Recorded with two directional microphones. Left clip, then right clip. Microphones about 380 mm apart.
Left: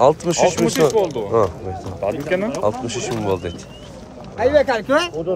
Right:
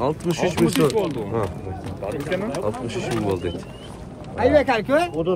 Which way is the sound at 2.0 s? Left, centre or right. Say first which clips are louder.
Left 5 dB; centre.